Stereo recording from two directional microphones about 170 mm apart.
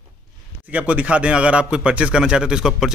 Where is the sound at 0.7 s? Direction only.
10° right (ahead or behind).